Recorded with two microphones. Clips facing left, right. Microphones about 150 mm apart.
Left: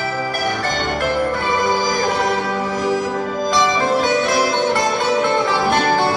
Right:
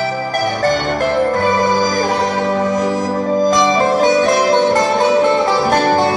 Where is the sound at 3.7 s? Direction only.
40° right (ahead or behind).